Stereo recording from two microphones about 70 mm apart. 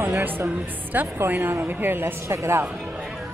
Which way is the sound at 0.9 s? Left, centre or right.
Right.